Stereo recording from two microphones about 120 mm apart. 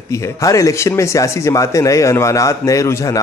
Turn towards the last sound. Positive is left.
turn(degrees=25)  # may be behind; listen again after turning